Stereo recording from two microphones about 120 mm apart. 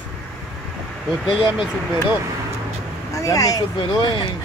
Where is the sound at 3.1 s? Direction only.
30° left (ahead or behind).